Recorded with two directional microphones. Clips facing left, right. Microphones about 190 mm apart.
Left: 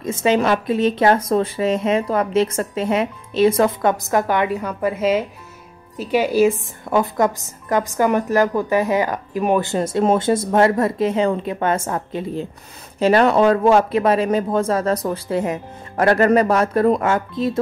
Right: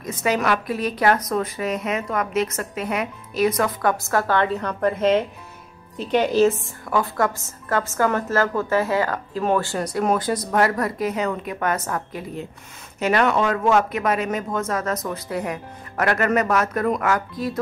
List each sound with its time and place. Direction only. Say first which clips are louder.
0.0 s a woman's voice: left 5 dB; 25° left (ahead or behind)